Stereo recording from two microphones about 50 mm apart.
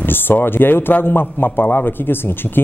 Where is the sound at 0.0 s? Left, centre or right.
Left.